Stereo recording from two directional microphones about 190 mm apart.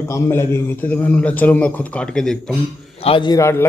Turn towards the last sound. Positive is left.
turn(degrees=15)  # may be behind; listen again after turning